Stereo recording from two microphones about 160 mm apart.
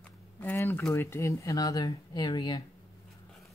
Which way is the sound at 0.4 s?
15° left (ahead or behind).